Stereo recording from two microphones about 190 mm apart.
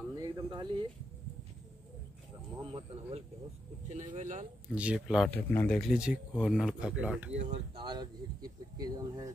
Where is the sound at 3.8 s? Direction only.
40° right (ahead or behind).